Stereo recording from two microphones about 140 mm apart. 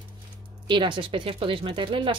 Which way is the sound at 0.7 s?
35° right (ahead or behind).